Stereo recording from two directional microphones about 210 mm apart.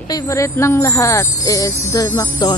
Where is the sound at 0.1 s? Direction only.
15° left (ahead or behind).